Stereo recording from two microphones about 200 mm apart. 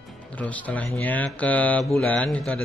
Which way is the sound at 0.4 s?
5° left (ahead or behind).